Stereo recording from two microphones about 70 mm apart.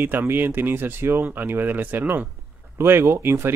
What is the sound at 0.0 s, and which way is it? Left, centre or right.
Speech, right.